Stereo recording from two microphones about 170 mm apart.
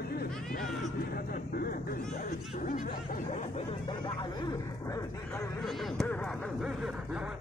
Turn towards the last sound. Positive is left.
turn(degrees=5)  # may be behind; listen again after turning